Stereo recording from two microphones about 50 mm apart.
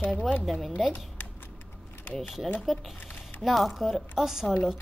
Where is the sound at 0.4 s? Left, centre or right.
Centre.